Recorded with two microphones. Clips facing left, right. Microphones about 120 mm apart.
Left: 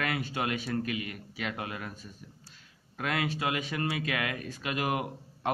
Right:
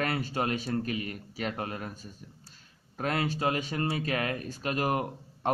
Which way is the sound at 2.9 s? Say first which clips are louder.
Right 2 dB; 35° right (ahead or behind).